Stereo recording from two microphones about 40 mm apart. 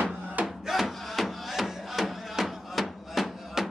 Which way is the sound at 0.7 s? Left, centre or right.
Centre.